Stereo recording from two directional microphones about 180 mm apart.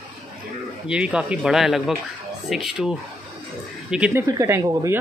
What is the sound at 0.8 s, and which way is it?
Speech, 5° right (ahead or behind).